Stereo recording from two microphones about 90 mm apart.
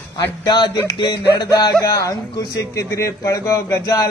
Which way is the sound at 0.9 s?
60° left (ahead or behind).